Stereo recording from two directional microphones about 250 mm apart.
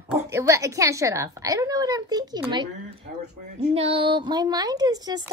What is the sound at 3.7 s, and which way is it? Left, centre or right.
Speech, right.